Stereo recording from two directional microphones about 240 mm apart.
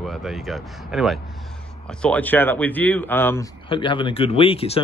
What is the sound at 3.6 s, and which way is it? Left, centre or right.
Speech, left.